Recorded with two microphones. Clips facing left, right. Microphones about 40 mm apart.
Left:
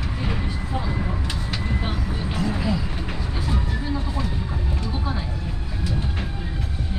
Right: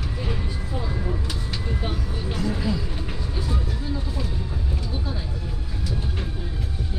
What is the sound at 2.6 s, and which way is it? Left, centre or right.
Vehicle, left.